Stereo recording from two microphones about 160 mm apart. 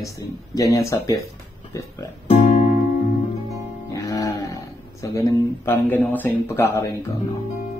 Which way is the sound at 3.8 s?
20° left (ahead or behind).